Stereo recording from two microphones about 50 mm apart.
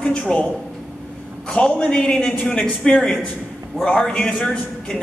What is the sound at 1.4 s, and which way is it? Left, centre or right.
A man's voice, left.